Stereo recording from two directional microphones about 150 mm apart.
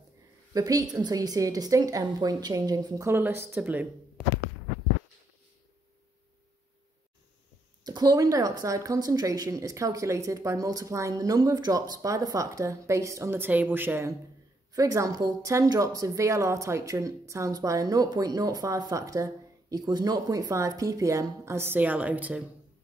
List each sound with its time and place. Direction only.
0.5 s speech: 25° right (ahead or behind)
7.8 s speech: 25° right (ahead or behind); by 22.4 s 10° right (ahead or behind)